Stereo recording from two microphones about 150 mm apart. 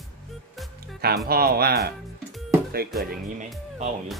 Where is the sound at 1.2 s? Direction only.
90° right.